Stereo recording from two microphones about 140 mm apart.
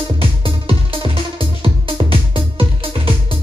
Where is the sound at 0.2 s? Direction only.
40° right (ahead or behind).